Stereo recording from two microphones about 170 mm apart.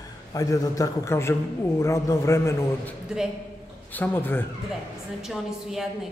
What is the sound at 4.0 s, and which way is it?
Speech, 10° left (ahead or behind).